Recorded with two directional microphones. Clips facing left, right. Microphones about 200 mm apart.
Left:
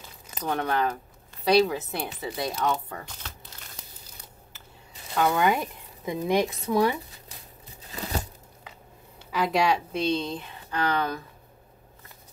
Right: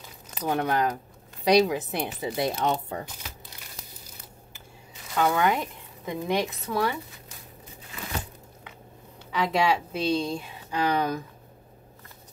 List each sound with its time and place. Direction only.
0.3 s speech: 10° right (ahead or behind); by 3.1 s 25° right (ahead or behind)
5.1 s speech: centre (ahead or behind)
5.6 s speech: 15° left (ahead or behind)
7.8 s crumpling: 35° left (ahead or behind)
9.3 s a woman's voice: centre (ahead or behind); by 11.2 s 15° right (ahead or behind)